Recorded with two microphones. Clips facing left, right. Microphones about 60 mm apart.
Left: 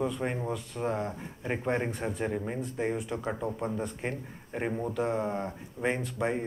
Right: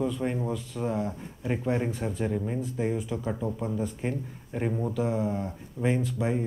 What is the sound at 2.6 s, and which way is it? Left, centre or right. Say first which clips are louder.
Speech: right 2 dB; left.